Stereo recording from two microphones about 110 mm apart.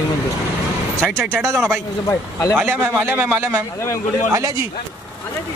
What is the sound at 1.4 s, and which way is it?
Speech, 25° right (ahead or behind).